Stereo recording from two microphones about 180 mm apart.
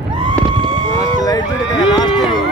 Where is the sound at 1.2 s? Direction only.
20° left (ahead or behind).